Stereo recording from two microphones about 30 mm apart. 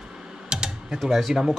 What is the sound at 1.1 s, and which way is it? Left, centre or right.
Speech, centre.